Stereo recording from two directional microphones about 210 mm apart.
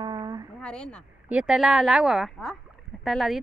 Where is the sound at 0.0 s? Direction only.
20° right (ahead or behind).